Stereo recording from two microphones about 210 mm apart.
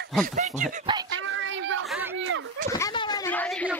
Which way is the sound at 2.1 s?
65° right (ahead or behind).